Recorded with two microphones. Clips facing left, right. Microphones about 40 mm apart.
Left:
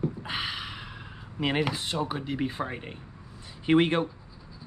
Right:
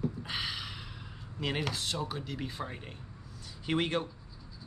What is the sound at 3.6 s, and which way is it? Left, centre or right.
Speech, left.